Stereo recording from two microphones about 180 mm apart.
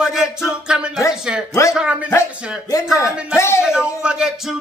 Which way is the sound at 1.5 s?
20° left (ahead or behind).